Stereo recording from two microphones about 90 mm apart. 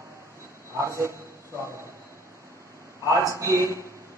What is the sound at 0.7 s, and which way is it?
Speech, 30° right (ahead or behind).